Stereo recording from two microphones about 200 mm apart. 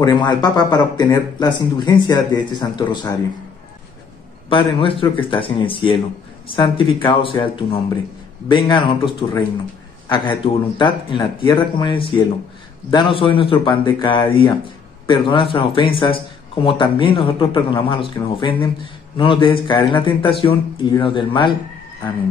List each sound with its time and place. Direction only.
0.0 s speech: 20° left (ahead or behind)
4.5 s speech: 25° left (ahead or behind)